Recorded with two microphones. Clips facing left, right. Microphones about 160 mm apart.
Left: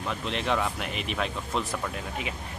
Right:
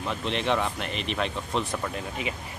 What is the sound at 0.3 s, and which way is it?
Speech, centre (ahead or behind).